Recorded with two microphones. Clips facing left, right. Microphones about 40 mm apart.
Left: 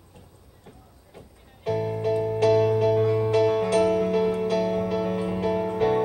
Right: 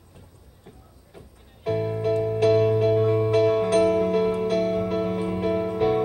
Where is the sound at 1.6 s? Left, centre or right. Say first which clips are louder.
Right 1 dB; right.